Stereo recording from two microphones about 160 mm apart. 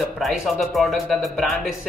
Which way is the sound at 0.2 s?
Centre (ahead or behind).